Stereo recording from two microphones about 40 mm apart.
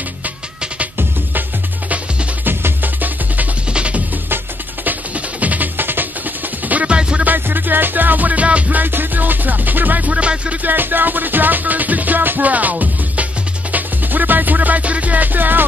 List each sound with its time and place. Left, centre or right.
2.4 s music: right
3.7 s music: right
5.8 s music: right
6.7 s music: right
7.0 s music: right
7.2 s music: right
8.8 s music: right
10.1 s music: right
10.6 s music: right